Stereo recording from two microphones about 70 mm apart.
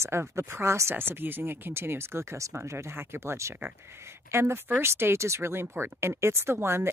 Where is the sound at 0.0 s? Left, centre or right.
Right.